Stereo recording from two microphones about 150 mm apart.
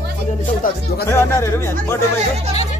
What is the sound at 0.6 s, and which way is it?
Speech, 70° left (ahead or behind).